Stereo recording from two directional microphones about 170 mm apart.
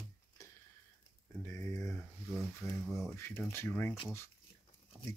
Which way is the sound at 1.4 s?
15° left (ahead or behind).